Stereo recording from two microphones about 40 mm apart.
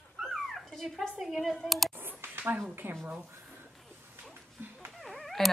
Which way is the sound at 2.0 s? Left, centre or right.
Right.